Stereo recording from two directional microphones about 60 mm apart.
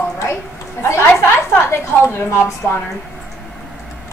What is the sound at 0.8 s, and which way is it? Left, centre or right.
A woman's voice, left.